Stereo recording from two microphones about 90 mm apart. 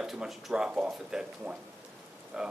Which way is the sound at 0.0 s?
Centre (ahead or behind).